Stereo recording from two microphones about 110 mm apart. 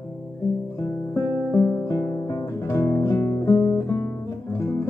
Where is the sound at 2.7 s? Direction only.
25° left (ahead or behind).